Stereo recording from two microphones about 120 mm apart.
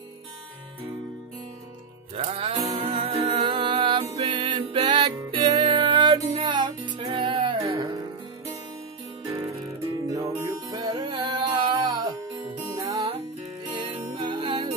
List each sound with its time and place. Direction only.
2.1 s music: 60° right (ahead or behind)
10.0 s music: 30° right (ahead or behind)